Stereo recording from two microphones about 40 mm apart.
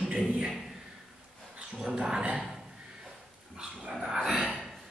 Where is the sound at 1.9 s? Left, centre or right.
Centre.